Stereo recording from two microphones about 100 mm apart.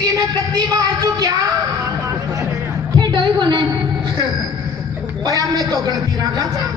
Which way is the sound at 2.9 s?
50° right (ahead or behind).